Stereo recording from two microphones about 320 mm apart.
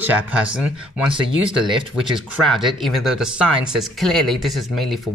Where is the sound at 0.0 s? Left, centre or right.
Centre.